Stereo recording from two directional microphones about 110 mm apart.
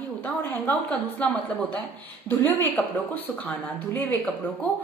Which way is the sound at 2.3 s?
15° left (ahead or behind).